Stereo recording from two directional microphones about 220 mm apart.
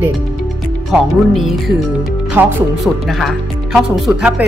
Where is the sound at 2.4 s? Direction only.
10° right (ahead or behind).